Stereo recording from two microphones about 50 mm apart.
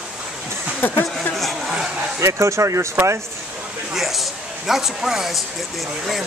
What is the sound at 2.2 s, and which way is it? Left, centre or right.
Speech, right.